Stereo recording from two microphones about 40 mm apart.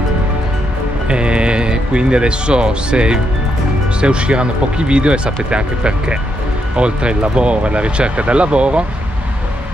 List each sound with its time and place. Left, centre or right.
1.0 s speech: right